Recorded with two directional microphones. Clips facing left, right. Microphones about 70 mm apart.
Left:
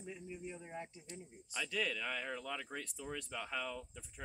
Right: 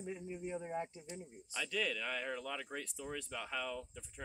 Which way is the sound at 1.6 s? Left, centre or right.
Centre.